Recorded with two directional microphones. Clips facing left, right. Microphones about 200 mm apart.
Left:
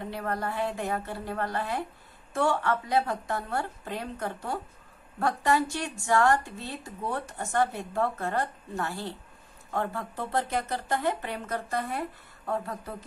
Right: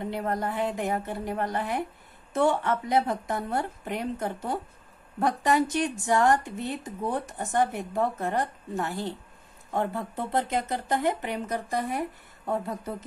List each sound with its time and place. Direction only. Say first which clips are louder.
0.1 s a woman's voice: right 1 dB; 20° right (ahead or behind)